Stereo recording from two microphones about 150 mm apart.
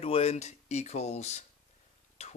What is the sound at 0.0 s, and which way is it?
Speech, 45° left (ahead or behind).